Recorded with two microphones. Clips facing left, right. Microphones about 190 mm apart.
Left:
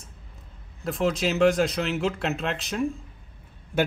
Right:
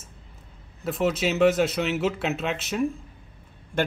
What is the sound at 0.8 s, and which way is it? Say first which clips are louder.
A man's voice: right 1 dB; centre (ahead or behind).